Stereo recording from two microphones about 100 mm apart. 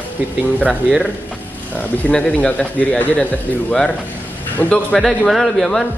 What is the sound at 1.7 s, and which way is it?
Speech, 15° left (ahead or behind).